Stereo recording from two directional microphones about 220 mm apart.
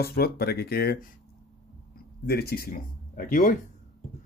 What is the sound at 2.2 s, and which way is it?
Speech, 45° left (ahead or behind).